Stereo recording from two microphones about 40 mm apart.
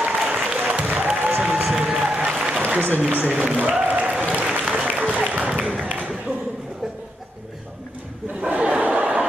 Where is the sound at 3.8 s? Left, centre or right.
Right.